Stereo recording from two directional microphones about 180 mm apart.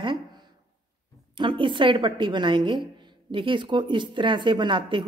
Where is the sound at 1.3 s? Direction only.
25° right (ahead or behind).